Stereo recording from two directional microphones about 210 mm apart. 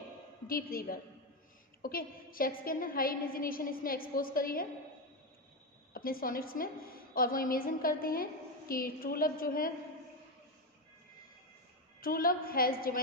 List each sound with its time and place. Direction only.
0.5 s a woman's voice: 45° left (ahead or behind)
5.9 s a woman's voice: 45° left (ahead or behind)
12.0 s a woman's voice: 45° left (ahead or behind)